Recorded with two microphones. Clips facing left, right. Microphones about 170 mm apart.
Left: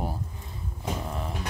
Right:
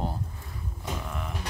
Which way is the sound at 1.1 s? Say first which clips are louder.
Left 2 dB; 30° left (ahead or behind).